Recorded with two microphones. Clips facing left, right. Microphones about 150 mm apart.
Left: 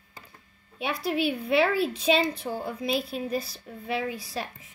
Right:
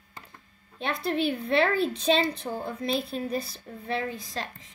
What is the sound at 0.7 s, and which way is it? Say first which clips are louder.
A woman's voice: even; 5° left (ahead or behind).